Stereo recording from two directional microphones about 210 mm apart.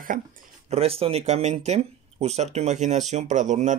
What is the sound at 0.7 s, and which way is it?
Speech, 30° right (ahead or behind).